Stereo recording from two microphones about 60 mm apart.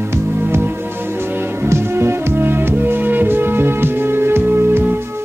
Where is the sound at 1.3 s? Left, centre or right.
Right.